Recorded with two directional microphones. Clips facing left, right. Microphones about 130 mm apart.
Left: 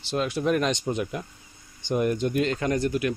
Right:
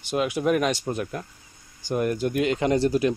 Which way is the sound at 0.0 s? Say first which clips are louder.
Right 2 dB; 10° right (ahead or behind).